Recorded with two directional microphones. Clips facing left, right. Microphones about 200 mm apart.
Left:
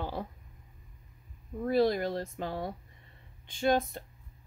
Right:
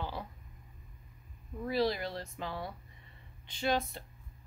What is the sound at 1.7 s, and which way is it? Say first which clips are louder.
Speech: left 5 dB; 50° left (ahead or behind).